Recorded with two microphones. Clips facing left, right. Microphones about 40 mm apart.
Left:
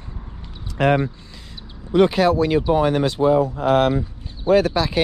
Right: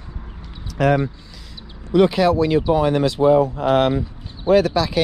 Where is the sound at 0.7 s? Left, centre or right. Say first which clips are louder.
Even; left.